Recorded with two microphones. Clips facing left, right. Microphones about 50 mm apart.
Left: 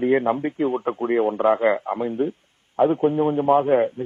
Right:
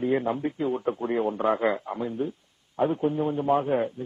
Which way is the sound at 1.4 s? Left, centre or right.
Left.